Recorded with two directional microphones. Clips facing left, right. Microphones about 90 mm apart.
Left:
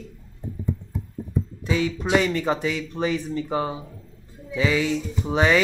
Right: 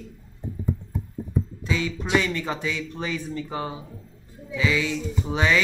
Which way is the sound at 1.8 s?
20° left (ahead or behind).